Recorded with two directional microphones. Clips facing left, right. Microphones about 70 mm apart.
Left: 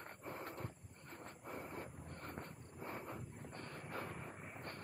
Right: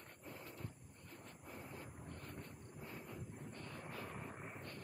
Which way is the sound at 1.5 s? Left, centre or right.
Left.